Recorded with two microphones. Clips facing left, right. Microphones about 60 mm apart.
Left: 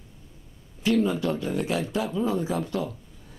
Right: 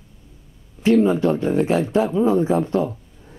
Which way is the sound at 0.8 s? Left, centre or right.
Right.